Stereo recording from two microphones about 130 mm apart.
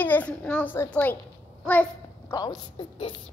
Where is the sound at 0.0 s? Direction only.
10° left (ahead or behind).